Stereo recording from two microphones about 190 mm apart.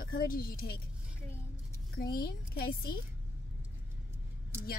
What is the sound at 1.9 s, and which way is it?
Speech, 50° left (ahead or behind).